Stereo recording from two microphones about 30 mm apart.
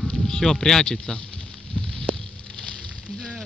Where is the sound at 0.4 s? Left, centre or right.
Centre.